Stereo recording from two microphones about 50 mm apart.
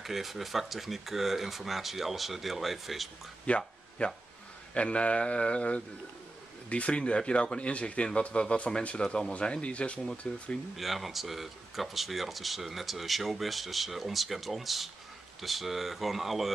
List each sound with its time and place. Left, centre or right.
0.0 s speech: centre
3.4 s a sound: left
4.7 s speech: left
10.8 s speech: centre